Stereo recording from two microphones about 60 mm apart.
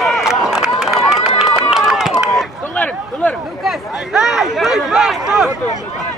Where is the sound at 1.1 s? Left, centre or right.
Centre.